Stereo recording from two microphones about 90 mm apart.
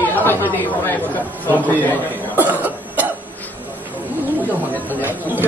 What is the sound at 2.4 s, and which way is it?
Cough, 20° right (ahead or behind).